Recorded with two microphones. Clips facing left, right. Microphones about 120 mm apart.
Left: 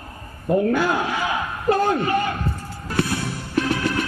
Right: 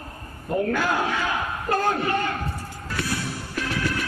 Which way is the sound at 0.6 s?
40° left (ahead or behind).